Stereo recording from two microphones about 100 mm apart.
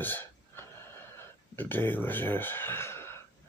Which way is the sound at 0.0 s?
20° left (ahead or behind).